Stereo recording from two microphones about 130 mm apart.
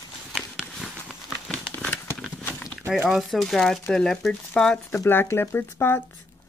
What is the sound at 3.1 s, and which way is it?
Speech, centre (ahead or behind).